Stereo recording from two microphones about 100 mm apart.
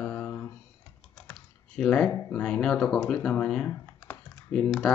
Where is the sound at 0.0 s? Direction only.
10° left (ahead or behind).